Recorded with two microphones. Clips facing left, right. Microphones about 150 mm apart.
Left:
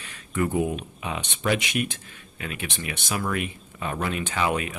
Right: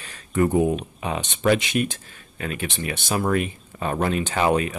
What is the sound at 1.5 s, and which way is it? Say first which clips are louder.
Speech: right 4 dB; 30° right (ahead or behind).